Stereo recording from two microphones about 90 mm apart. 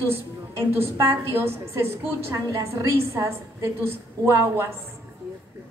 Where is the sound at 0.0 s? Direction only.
25° right (ahead or behind).